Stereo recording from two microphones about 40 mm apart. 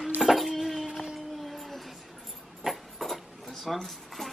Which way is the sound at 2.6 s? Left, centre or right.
Centre.